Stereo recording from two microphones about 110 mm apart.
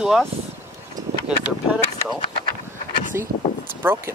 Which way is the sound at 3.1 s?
25° right (ahead or behind).